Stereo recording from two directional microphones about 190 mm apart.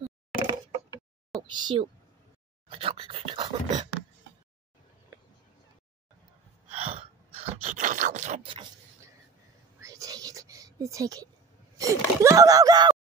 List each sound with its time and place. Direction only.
1.5 s speech: 25° right (ahead or behind)
7.5 s scrape: 35° right (ahead or behind)
9.8 s whispering: 15° right (ahead or behind)
11.8 s speech: 15° right (ahead or behind)